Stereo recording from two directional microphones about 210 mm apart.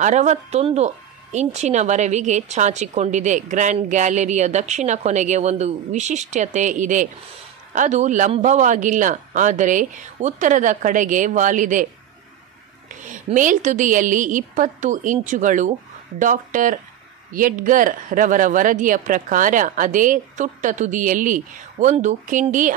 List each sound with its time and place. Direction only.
0.0 s speech: 35° right (ahead or behind)